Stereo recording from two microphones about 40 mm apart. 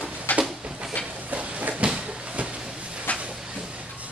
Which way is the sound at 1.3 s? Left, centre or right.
Right.